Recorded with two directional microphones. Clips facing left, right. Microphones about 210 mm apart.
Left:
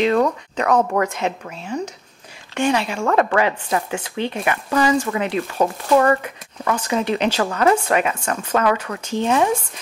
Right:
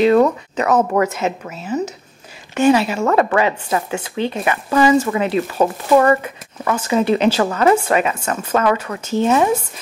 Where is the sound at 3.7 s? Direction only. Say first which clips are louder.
Right 2 dB; 25° right (ahead or behind).